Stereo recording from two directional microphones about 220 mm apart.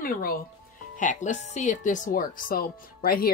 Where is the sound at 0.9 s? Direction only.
35° left (ahead or behind).